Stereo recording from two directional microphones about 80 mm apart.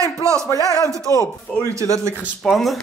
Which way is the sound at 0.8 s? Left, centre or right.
Right.